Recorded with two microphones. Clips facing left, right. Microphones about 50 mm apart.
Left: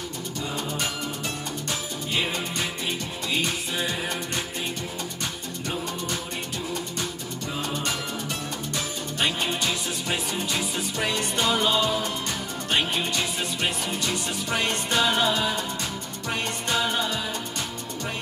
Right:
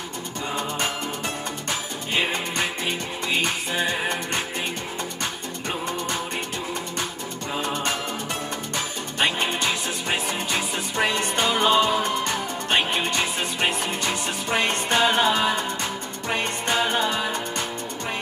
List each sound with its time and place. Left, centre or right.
1.7 s music: right
7.5 s music: right